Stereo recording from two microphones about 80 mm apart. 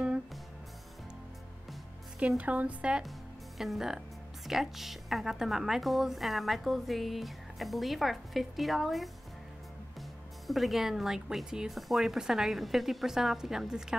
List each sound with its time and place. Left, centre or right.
2.1 s a woman's voice: centre
3.5 s a woman's voice: centre
10.4 s a woman's voice: centre